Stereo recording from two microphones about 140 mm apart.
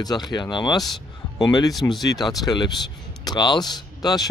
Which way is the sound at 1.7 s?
Centre (ahead or behind).